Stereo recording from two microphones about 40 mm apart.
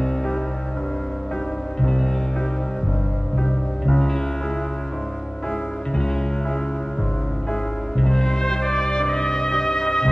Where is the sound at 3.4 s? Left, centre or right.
Centre.